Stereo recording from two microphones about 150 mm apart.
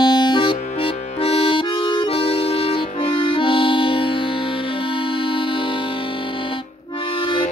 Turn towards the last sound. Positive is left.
turn(degrees=35)  # may be behind; listen again after turning